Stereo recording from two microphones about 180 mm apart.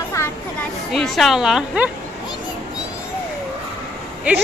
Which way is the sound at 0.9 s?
Centre (ahead or behind).